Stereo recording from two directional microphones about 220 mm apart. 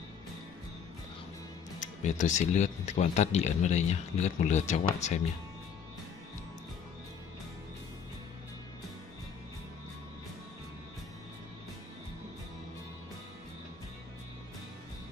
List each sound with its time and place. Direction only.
1.8 s speech: 35° left (ahead or behind)